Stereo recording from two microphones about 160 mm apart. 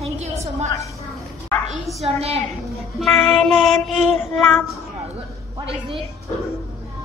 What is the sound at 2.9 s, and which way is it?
A woman's voice, 5° left (ahead or behind).